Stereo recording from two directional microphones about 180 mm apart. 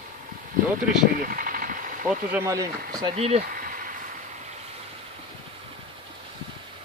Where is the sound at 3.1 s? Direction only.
35° right (ahead or behind).